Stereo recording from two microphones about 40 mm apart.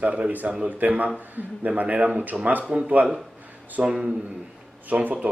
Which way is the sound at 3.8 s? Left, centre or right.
Right.